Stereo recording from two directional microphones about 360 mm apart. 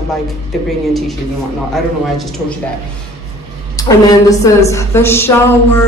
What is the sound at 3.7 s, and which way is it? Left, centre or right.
A woman's voice, centre.